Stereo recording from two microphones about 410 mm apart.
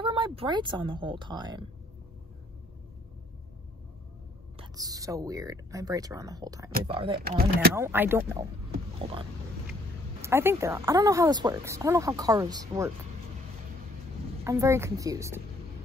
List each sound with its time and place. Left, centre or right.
0.0 s a woman's voice: centre
4.6 s speech: centre
7.2 s speech: right
7.7 s speech: centre
10.2 s speech: centre
14.4 s speech: centre